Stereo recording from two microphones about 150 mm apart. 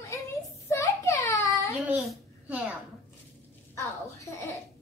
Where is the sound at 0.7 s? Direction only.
20° left (ahead or behind).